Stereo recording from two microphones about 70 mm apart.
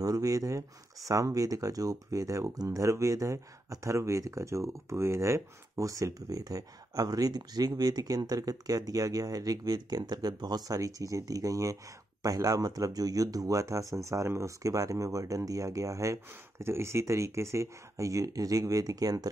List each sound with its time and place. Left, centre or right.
0.0 s speech: right